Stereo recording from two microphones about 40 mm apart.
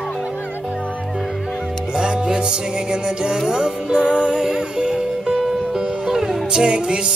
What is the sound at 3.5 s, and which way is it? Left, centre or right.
Music, right.